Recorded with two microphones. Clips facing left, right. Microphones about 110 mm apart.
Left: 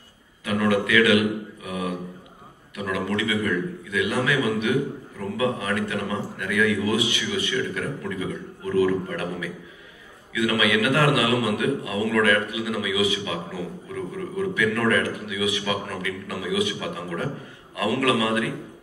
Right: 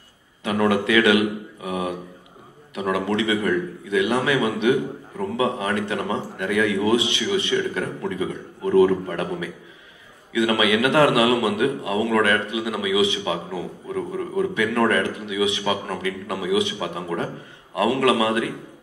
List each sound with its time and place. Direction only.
0.4 s a man's voice: 25° right (ahead or behind)